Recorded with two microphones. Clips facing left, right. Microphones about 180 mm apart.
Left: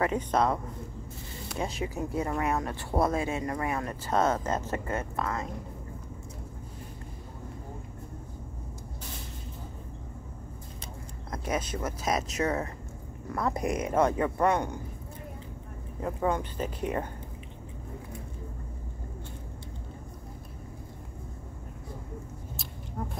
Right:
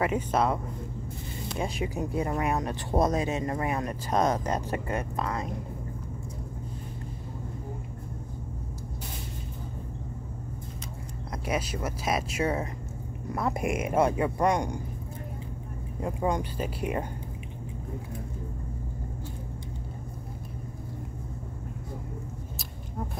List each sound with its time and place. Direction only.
0.0 s speech: 10° right (ahead or behind)
1.6 s speech: 15° right (ahead or behind)
11.7 s speech: 10° right (ahead or behind)
16.0 s speech: 15° right (ahead or behind)